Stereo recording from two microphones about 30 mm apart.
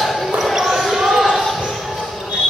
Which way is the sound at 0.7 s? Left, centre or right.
Centre.